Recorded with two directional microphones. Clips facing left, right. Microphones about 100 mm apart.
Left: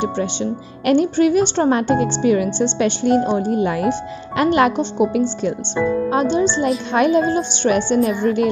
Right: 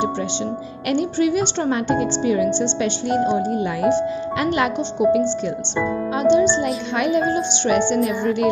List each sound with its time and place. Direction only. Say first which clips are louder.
0.8 s a woman's voice: left 5 dB; 50° left (ahead or behind)
6.3 s a woman's voice: right 1 dB; 40° left (ahead or behind)